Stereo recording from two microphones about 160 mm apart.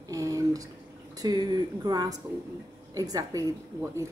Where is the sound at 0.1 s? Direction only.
20° right (ahead or behind).